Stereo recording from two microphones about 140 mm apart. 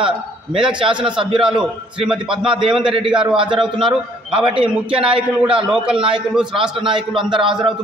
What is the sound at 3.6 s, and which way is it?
Speech, 5° right (ahead or behind).